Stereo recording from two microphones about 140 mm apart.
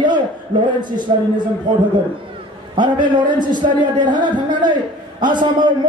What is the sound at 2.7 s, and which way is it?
A man's voice, 35° right (ahead or behind).